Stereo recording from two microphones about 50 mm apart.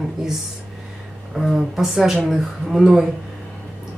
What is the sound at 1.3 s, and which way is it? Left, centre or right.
Speech, centre.